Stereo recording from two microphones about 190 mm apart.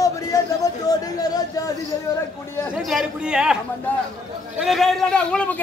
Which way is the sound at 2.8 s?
Centre (ahead or behind).